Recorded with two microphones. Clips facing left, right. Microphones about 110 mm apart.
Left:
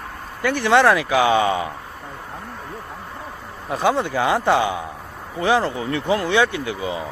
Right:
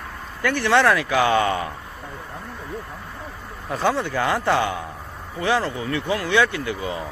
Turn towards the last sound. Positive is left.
turn(degrees=20)  # may be behind; listen again after turning